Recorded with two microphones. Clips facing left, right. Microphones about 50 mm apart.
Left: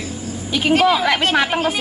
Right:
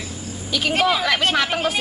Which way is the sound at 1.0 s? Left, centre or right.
Centre.